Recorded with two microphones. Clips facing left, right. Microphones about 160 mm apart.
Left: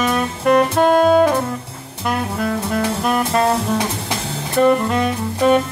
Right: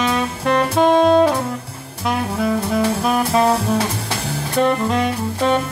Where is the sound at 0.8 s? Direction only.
5° left (ahead or behind).